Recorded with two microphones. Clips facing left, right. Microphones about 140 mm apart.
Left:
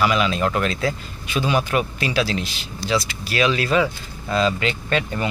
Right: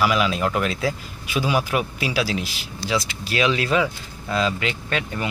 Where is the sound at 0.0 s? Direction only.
5° right (ahead or behind).